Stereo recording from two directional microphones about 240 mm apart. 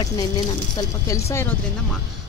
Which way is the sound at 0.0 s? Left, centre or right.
Centre.